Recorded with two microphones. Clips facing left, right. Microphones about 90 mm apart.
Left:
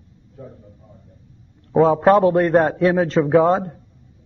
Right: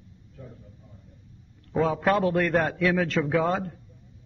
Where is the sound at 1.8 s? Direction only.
30° left (ahead or behind).